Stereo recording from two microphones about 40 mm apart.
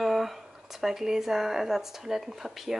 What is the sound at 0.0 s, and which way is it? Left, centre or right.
Speech, centre.